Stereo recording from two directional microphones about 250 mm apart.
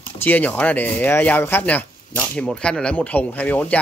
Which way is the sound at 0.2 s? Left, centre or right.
Centre.